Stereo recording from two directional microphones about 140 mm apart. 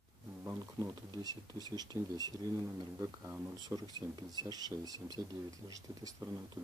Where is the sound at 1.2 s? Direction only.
25° right (ahead or behind).